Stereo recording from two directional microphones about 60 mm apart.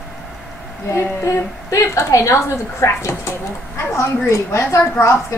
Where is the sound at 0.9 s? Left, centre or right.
Left.